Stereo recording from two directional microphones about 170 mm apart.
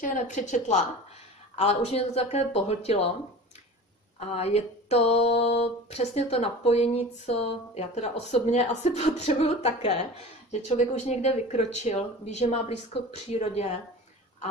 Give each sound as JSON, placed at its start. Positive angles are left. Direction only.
{"t": 0.0, "sound": "speech", "side_deg": 45}
{"t": 4.2, "sound": "speech", "side_deg": 40}
{"t": 11.1, "sound": "speech", "side_deg": 40}